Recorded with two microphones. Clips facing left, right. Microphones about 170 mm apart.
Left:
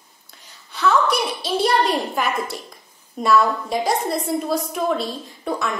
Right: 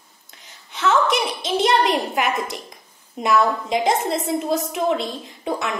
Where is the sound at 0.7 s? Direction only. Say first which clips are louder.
Even; 20° right (ahead or behind).